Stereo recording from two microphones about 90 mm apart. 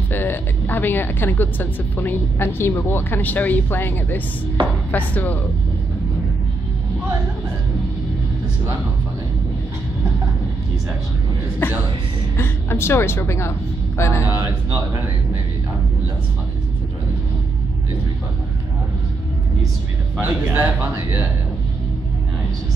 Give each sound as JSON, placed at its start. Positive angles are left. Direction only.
{"t": 0.1, "sound": "speech", "side_deg": 25}
{"t": 11.6, "sound": "speech", "side_deg": 25}
{"t": 20.2, "sound": "a man's voice", "side_deg": -25}